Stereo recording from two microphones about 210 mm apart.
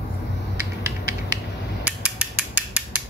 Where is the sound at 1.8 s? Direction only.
5° right (ahead or behind).